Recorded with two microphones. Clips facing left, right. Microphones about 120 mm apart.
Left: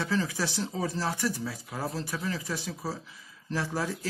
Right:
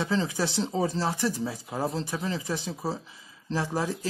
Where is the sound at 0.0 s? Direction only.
20° right (ahead or behind).